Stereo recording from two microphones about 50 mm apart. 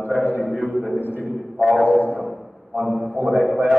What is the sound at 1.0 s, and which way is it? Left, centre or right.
Speech, left.